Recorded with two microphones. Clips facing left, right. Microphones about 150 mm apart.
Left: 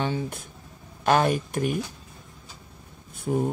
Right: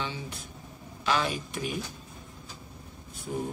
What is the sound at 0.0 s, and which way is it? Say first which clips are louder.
Speech: left 8 dB; 50° left (ahead or behind).